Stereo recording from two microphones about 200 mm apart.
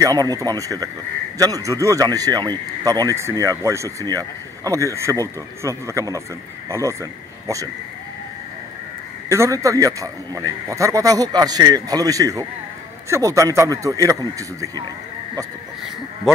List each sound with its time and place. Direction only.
0.0 s speech: 20° right (ahead or behind)
9.3 s speech: 15° right (ahead or behind)